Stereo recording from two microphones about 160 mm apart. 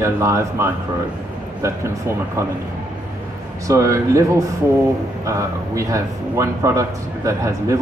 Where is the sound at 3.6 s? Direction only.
20° right (ahead or behind).